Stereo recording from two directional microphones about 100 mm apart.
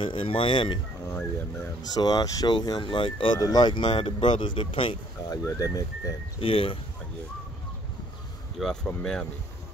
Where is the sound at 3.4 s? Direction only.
40° left (ahead or behind); by 4.9 s 60° left (ahead or behind).